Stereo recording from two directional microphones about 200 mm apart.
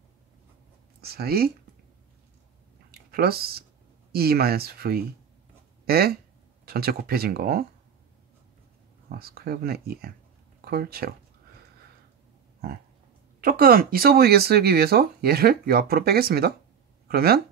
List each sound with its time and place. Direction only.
1.0 s speech: 50° right (ahead or behind)
2.9 s a sound: 50° right (ahead or behind)
4.1 s speech: 50° right (ahead or behind)
9.2 s speech: 50° right (ahead or behind)
13.4 s speech: 45° right (ahead or behind)